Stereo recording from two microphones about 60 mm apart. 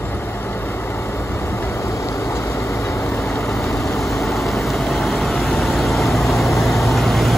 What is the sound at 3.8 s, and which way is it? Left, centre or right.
Vehicle, centre.